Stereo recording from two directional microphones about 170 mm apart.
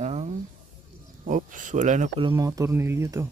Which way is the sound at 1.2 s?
50° right (ahead or behind).